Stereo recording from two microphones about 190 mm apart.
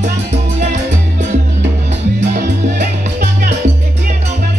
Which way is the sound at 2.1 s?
40° right (ahead or behind).